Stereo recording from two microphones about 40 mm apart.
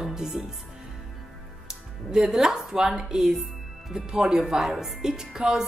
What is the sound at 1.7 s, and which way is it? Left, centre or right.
A woman's voice, centre.